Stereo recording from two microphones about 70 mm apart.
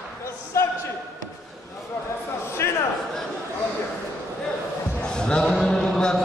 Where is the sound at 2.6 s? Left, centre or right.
Left.